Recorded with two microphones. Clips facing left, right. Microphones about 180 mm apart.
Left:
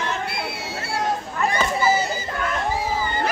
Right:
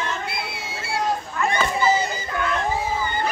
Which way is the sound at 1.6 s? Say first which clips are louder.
Even; 5° left (ahead or behind).